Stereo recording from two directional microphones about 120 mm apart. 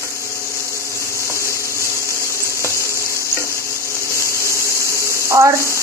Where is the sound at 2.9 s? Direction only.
25° right (ahead or behind).